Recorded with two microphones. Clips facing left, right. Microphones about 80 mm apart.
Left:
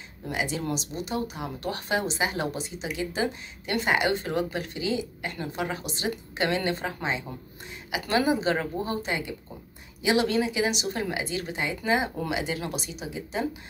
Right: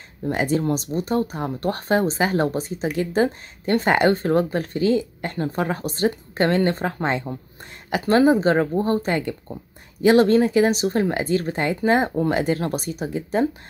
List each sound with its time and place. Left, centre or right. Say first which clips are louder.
0.3 s a woman's voice: right 8 dB; right